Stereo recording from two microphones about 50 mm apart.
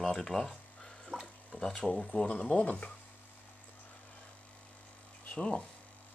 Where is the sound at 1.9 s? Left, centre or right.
Left.